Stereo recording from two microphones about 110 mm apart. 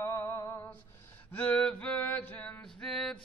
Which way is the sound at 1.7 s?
10° left (ahead or behind).